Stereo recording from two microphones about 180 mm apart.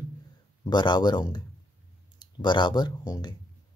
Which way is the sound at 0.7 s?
25° left (ahead or behind).